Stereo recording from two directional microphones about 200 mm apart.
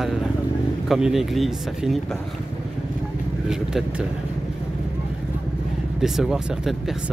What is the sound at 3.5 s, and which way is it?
Speech, 5° right (ahead or behind).